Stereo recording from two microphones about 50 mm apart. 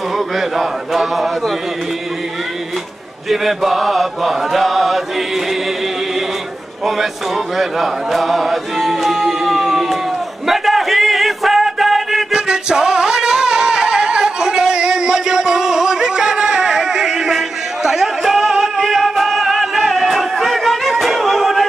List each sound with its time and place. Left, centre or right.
0.4 s speech: centre
3.3 s chant: centre
7.5 s music: centre
12.3 s music: centre